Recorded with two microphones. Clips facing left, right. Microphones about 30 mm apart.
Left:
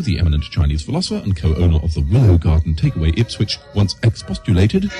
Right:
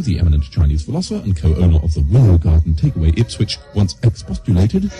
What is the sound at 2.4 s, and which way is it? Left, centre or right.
Music, left.